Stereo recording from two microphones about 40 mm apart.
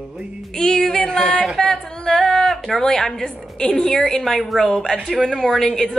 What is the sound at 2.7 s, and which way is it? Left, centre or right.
Speech, centre.